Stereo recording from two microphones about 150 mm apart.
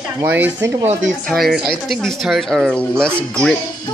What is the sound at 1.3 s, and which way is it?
Speech, centre (ahead or behind).